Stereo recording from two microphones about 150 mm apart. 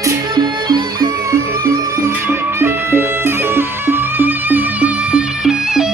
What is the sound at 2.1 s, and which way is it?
Music, 15° right (ahead or behind).